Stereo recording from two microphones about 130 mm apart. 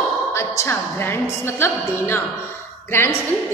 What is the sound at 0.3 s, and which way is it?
A woman's voice, 20° left (ahead or behind).